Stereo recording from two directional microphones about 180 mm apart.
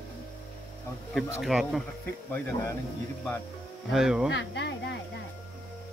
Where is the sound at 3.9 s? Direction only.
5° right (ahead or behind).